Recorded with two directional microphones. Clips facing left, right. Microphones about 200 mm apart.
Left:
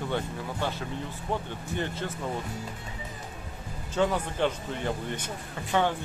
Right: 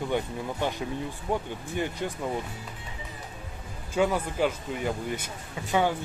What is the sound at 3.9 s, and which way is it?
Speech, 10° right (ahead or behind).